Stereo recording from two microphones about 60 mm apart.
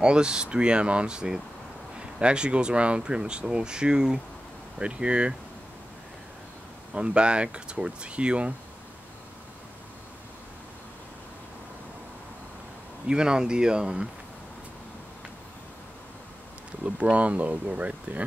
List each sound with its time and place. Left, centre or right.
0.0 s speech: centre
6.9 s speech: centre
13.0 s speech: centre
16.8 s speech: right